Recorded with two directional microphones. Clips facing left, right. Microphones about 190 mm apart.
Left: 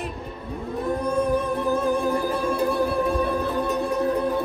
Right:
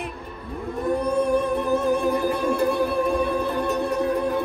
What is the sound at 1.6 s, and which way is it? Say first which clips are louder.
Music: right 1 dB; 15° right (ahead or behind).